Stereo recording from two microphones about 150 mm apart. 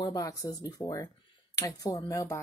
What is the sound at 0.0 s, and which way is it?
Speech, 25° left (ahead or behind).